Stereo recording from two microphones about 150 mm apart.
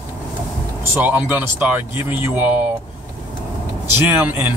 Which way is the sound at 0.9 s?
10° right (ahead or behind).